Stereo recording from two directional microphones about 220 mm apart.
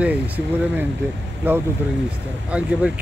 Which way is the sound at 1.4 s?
10° right (ahead or behind).